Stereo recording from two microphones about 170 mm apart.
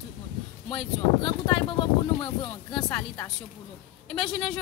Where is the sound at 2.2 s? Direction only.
30° left (ahead or behind).